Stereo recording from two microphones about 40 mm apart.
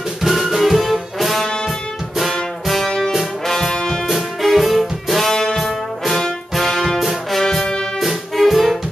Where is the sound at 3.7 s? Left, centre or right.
Centre.